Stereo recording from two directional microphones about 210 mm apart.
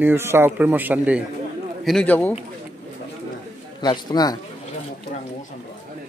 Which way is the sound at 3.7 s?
20° left (ahead or behind).